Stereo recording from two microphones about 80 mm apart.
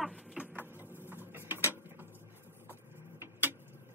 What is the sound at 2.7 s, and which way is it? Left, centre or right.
Printer, right.